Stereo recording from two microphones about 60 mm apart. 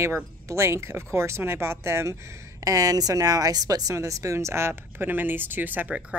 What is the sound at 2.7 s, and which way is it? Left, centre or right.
A woman's voice, right.